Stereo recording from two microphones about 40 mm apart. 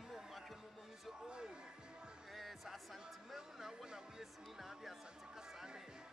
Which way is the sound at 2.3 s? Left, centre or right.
Centre.